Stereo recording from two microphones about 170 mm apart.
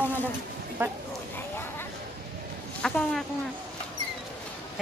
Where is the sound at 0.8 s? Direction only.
10° right (ahead or behind).